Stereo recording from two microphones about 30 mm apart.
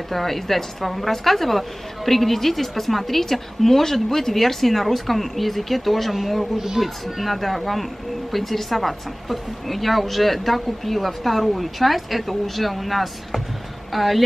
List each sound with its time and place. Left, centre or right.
0.1 s a woman's voice: centre
6.5 s a child's voice: centre
7.2 s a woman's voice: centre